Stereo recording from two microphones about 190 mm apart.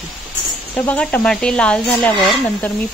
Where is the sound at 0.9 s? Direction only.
10° left (ahead or behind).